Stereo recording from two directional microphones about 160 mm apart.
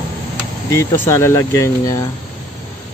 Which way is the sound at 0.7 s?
15° left (ahead or behind).